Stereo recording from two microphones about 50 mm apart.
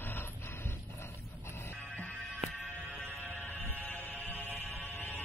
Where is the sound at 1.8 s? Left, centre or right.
Left.